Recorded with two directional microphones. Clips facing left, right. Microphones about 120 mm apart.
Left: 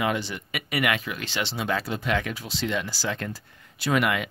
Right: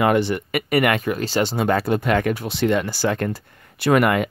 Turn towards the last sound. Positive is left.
turn(degrees=-50)  # may be behind; listen again after turning